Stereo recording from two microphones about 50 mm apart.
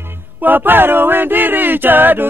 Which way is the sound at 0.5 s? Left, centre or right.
Right.